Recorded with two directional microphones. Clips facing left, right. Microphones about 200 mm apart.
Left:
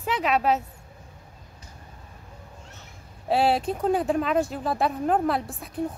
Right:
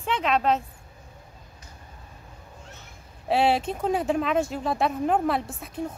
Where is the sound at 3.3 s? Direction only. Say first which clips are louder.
Even; centre (ahead or behind).